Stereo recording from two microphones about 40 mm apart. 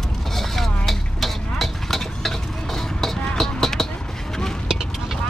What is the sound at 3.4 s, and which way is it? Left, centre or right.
Basketball bounce, centre.